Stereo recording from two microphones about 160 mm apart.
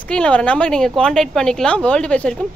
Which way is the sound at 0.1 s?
5° left (ahead or behind).